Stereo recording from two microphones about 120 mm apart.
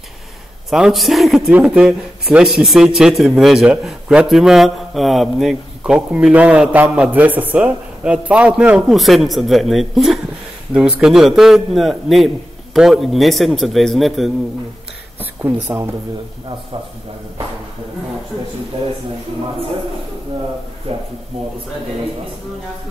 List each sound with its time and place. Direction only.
0.7 s a man's voice: centre (ahead or behind)
15.4 s speech: 20° right (ahead or behind)
20.9 s speech: 50° right (ahead or behind)